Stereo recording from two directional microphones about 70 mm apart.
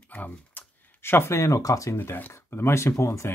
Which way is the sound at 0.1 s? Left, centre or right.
Left.